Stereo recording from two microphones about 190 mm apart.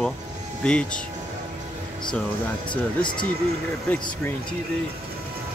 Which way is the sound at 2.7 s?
25° left (ahead or behind).